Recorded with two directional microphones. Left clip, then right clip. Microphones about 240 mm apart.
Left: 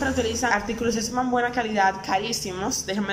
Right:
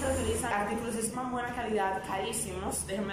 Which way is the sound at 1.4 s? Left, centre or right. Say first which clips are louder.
Left 8 dB; left.